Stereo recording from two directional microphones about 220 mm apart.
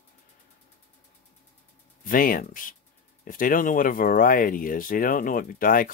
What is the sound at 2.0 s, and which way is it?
Speech, 40° left (ahead or behind).